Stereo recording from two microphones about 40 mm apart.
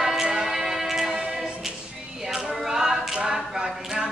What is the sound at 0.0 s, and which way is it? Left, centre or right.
Music, centre.